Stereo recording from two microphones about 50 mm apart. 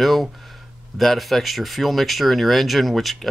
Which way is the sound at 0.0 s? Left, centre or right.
Centre.